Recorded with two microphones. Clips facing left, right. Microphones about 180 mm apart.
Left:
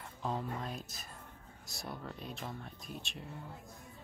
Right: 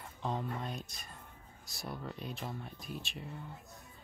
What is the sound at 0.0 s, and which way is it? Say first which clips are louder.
Speech: even; centre (ahead or behind).